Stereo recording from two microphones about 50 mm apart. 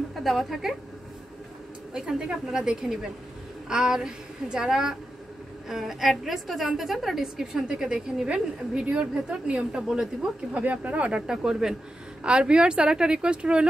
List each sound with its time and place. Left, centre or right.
0.1 s a woman's voice: centre
2.0 s a woman's voice: centre
10.5 s a woman's voice: right